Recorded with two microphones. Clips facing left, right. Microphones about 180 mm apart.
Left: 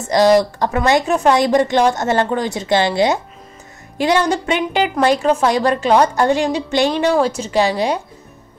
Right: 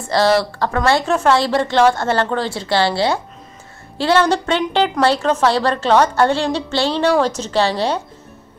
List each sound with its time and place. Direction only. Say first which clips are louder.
0.0 s a woman's voice: left 3 dB; 15° left (ahead or behind)